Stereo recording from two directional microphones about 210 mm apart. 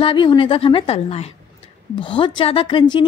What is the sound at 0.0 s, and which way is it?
Speech, 25° left (ahead or behind).